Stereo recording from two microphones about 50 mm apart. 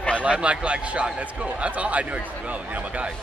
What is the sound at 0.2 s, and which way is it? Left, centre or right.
A man's voice, right.